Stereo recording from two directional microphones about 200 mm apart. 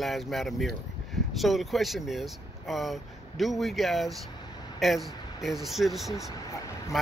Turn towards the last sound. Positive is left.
turn(degrees=15)  # may be behind; listen again after turning